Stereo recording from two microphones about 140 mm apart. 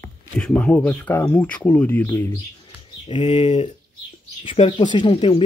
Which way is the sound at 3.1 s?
40° left (ahead or behind).